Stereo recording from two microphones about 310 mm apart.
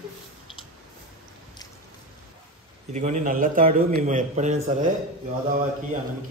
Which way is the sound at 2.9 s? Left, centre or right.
Right.